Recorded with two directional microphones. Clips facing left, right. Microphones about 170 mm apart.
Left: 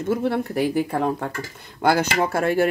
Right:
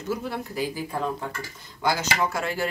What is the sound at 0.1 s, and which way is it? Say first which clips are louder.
Speech: left 7 dB; 60° left (ahead or behind).